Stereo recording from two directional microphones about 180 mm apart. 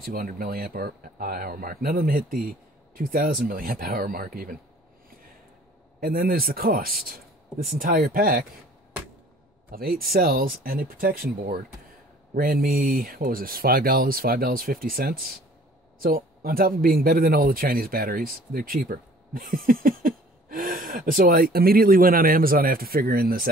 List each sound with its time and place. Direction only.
0.0 s speech: 55° right (ahead or behind)
5.9 s speech: 55° right (ahead or behind)
9.7 s speech: 55° right (ahead or behind)